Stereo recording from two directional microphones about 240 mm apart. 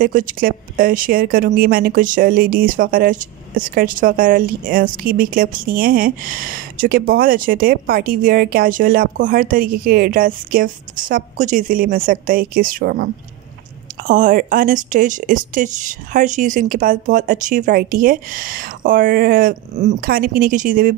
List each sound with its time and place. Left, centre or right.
0.0 s speech: right
14.0 s speech: right